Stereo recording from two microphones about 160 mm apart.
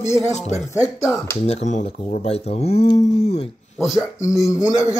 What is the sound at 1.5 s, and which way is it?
Speech, 45° left (ahead or behind).